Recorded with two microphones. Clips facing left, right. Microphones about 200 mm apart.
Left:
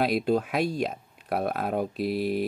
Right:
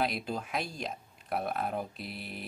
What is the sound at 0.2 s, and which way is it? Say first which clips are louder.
Speech: left 11 dB; 65° left (ahead or behind).